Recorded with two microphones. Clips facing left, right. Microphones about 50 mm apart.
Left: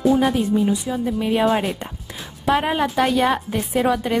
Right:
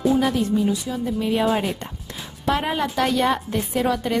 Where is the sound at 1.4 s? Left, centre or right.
Centre.